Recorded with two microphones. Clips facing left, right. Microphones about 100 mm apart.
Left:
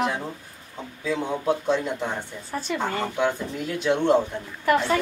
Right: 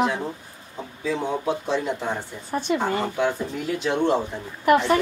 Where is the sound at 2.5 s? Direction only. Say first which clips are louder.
Right 6 dB; 20° right (ahead or behind).